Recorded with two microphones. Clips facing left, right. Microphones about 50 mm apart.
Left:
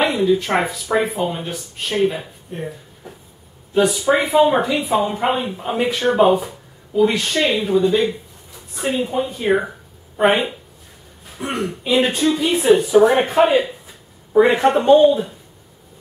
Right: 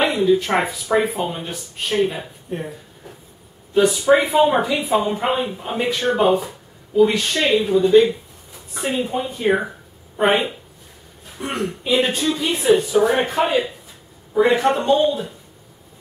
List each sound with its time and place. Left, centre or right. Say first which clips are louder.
0.0 s speech: even; centre
3.7 s speech: right 1 dB; centre
13.0 s a man's voice: left 4 dB; centre
14.7 s speech: left 5 dB; centre